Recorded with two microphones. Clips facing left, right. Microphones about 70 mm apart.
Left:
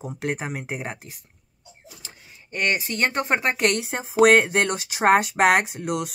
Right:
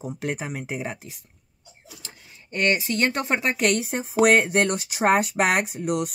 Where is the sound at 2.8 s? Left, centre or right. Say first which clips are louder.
Even; left.